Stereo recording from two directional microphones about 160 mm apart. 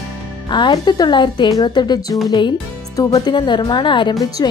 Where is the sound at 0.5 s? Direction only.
30° left (ahead or behind).